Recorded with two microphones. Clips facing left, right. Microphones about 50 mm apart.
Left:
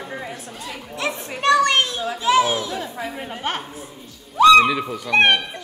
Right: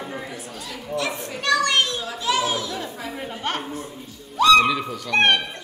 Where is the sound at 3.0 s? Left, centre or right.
Centre.